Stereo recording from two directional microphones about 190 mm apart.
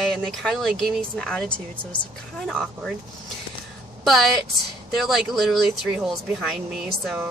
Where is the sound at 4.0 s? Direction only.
Centre (ahead or behind).